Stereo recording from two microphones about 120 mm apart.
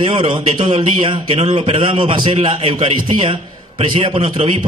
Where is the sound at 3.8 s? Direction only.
50° right (ahead or behind).